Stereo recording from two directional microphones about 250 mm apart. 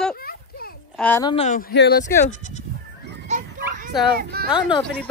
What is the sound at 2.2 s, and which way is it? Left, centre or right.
Speech, left.